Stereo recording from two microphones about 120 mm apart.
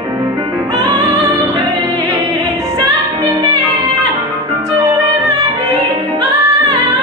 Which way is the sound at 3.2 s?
35° right (ahead or behind).